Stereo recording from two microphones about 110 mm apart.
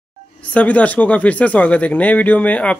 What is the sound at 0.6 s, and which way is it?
Speech, 15° left (ahead or behind).